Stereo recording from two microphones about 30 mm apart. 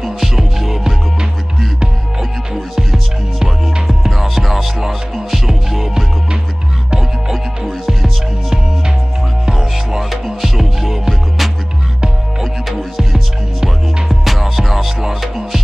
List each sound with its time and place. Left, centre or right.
0.2 s music: centre
3.8 s music: centre
9.5 s music: right
10.4 s music: centre
14.0 s music: centre